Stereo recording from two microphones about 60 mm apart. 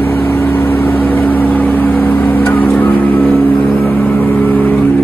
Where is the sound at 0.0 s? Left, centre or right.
Left.